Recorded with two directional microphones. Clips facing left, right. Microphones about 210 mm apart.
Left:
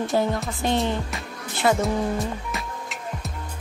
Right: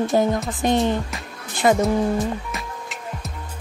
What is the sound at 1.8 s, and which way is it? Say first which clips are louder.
Music: right 4 dB; centre (ahead or behind).